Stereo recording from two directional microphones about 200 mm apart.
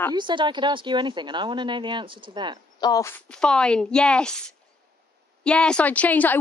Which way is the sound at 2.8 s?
15° left (ahead or behind).